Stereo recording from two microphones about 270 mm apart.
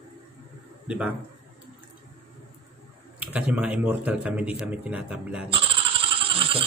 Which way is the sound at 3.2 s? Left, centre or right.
Centre.